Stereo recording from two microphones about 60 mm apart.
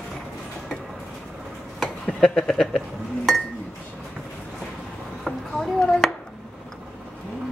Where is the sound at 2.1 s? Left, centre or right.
Centre.